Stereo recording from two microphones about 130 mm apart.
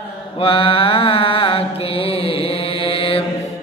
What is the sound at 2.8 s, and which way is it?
Mantra, 45° left (ahead or behind).